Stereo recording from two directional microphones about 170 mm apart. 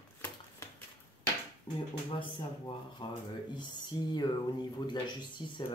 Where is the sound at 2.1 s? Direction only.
30° left (ahead or behind).